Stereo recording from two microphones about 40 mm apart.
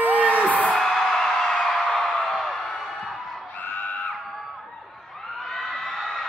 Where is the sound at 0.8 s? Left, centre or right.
Centre.